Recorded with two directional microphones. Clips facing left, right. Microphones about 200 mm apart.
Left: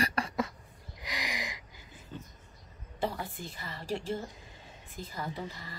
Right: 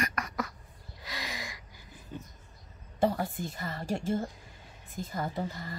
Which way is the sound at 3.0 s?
45° right (ahead or behind).